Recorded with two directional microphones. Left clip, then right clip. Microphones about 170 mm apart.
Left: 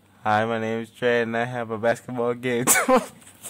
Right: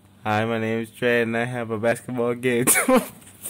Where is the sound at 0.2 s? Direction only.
Centre (ahead or behind).